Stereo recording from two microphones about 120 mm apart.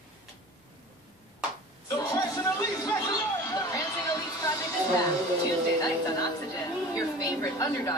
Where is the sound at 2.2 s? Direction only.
30° left (ahead or behind).